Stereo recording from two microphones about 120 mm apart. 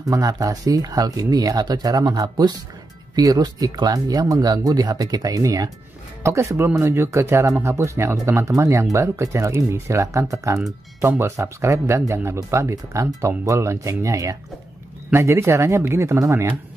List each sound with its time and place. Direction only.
0.0 s speech: 30° right (ahead or behind)